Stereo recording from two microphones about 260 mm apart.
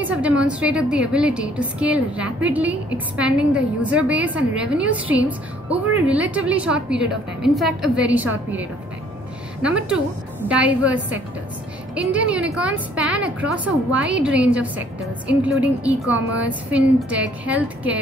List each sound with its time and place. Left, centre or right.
0.0 s a woman's voice: centre